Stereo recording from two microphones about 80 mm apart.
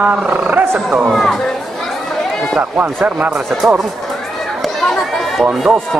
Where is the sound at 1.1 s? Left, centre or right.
Centre.